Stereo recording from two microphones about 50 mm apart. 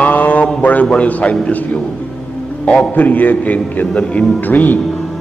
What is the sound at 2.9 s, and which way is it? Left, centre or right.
A man's voice, left.